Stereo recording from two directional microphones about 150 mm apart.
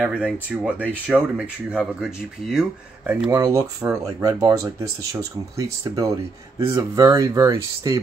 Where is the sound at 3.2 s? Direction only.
25° right (ahead or behind).